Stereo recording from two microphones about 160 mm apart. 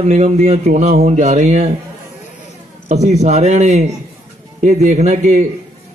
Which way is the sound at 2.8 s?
45° right (ahead or behind).